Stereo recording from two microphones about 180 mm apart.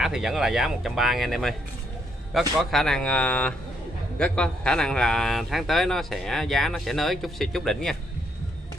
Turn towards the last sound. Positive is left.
turn(degrees=0)  # may be behind; listen again after turning